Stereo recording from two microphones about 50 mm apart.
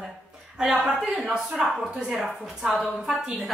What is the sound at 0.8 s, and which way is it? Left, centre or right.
Speech, centre.